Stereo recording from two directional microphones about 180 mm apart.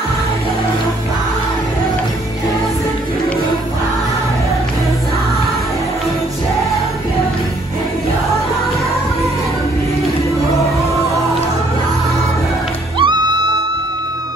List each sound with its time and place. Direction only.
13.0 s music: 25° right (ahead or behind)